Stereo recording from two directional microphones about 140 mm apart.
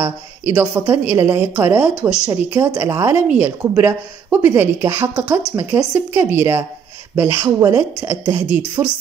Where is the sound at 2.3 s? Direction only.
25° right (ahead or behind).